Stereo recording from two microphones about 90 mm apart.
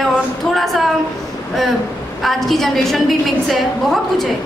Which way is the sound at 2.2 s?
Centre (ahead or behind).